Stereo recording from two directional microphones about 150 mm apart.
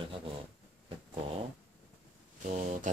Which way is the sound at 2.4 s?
50° right (ahead or behind).